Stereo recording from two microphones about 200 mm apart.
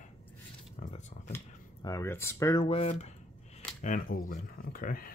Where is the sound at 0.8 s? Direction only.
30° left (ahead or behind).